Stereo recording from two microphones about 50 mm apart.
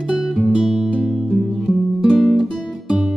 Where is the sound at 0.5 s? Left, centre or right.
Centre.